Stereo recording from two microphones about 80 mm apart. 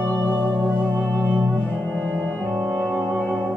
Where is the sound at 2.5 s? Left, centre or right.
Centre.